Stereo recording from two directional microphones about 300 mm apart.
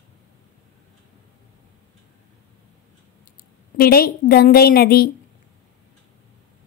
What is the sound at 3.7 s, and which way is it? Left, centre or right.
A woman's voice, left.